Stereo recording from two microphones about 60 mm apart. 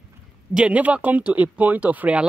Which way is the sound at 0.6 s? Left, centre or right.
Right.